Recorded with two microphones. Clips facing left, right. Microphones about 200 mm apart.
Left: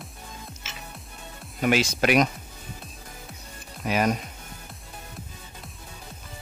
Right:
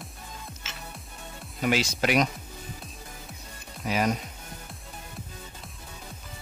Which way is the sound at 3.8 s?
60° left (ahead or behind).